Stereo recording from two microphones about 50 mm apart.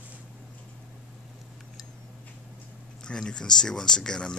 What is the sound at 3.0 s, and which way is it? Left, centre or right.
Speech, centre.